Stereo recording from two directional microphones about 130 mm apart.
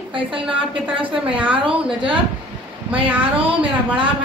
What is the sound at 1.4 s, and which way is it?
Speech, 10° right (ahead or behind).